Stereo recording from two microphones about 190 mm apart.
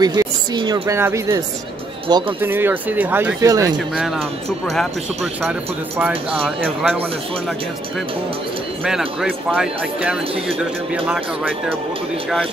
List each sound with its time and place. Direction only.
0.0 s speech: 20° right (ahead or behind)
2.4 s speech: 10° right (ahead or behind)
3.7 s speech: 5° right (ahead or behind)
8.8 s speech: centre (ahead or behind)